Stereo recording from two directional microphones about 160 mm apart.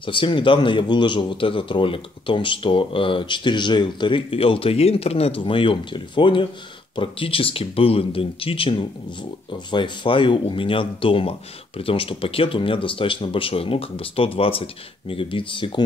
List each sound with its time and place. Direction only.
0.0 s a man's voice: 30° left (ahead or behind)